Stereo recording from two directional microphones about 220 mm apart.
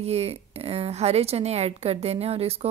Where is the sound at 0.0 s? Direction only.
30° right (ahead or behind).